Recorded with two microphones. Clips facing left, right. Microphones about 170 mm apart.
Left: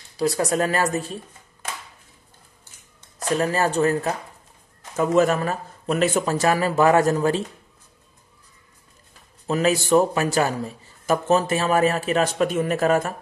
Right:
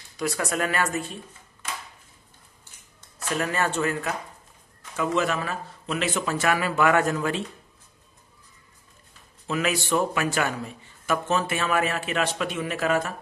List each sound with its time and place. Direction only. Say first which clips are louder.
0.2 s a man's voice: left 6 dB; 35° left (ahead or behind)
3.2 s a man's voice: left 5 dB; 35° left (ahead or behind)
9.5 s a man's voice: left 6 dB; 35° left (ahead or behind)